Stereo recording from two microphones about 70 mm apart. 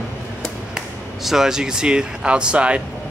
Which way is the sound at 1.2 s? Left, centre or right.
Centre.